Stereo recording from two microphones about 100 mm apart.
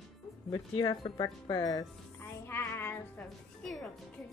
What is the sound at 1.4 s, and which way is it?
Speech, 40° left (ahead or behind).